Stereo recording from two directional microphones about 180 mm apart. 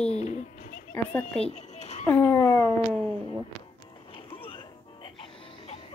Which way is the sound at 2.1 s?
15° left (ahead or behind).